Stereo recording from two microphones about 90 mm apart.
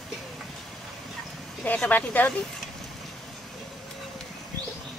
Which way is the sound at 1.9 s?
20° left (ahead or behind).